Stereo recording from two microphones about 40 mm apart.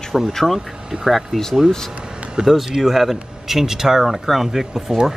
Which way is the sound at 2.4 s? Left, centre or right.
Centre.